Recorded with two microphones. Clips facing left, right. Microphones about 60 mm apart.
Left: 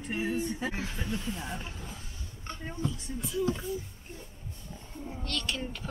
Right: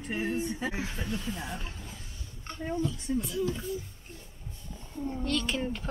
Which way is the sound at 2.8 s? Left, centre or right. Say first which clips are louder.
Right 5 dB; centre.